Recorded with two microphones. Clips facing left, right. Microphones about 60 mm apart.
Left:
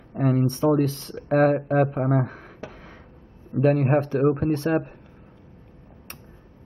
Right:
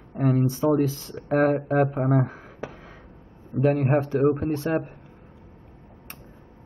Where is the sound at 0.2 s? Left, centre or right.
Centre.